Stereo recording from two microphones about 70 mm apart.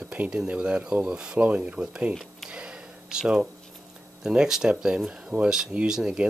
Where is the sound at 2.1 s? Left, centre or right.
Centre.